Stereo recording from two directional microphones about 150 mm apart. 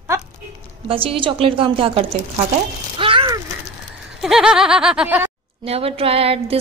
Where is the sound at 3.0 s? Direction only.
35° right (ahead or behind).